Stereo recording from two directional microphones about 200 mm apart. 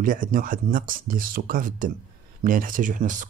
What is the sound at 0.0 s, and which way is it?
Speech, 40° right (ahead or behind).